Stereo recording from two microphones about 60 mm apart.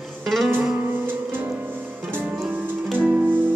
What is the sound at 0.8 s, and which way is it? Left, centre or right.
Music, right.